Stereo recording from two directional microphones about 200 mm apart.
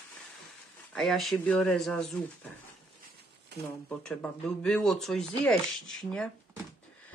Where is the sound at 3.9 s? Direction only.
5° left (ahead or behind).